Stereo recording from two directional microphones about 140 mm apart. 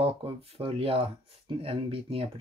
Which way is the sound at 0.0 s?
45° right (ahead or behind).